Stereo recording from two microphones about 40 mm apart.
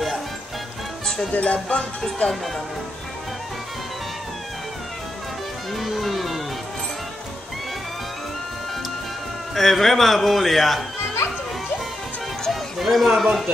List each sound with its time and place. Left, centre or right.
1.0 s music: centre
1.3 s music: left
2.2 s speech: left
5.7 s music: centre
9.6 s a man's voice: centre
12.4 s a sound: centre